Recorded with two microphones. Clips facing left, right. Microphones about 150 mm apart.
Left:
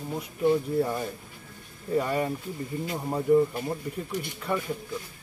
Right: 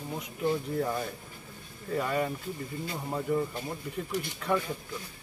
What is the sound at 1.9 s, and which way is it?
Speech, 10° left (ahead or behind).